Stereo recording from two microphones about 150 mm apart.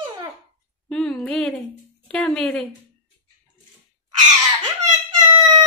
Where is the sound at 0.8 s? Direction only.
5° left (ahead or behind).